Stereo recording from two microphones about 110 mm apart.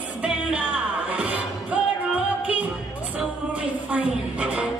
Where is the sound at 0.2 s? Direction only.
10° right (ahead or behind).